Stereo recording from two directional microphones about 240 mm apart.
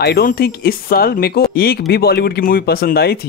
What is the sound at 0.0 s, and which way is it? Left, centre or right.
Speech, left.